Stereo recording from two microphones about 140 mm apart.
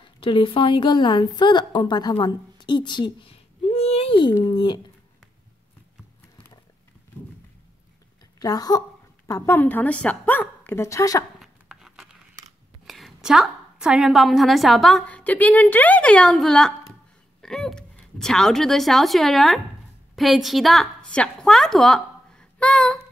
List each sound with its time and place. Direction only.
0.0 s a woman's voice: 35° left (ahead or behind)
8.4 s speech: 25° left (ahead or behind)
9.3 s a woman's voice: 15° left (ahead or behind)
11.4 s dog: centre (ahead or behind)
12.8 s a woman's voice: centre (ahead or behind)